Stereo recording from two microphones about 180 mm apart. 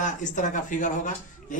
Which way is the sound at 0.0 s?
45° left (ahead or behind).